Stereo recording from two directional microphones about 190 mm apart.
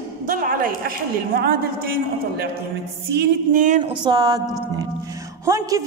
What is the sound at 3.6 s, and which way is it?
Speech, 40° right (ahead or behind).